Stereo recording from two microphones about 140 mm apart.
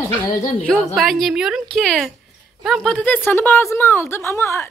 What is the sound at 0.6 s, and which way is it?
A woman's voice, 5° left (ahead or behind).